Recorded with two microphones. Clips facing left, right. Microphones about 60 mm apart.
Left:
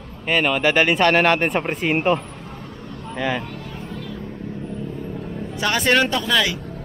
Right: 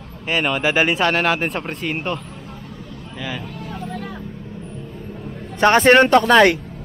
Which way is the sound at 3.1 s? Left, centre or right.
Centre.